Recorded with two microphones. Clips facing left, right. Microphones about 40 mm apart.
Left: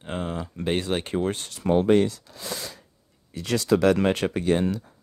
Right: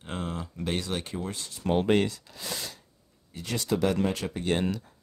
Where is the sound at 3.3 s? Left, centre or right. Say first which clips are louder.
Left 7 dB; left.